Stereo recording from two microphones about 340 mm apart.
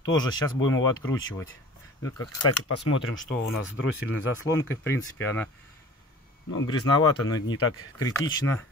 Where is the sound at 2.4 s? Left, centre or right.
Left.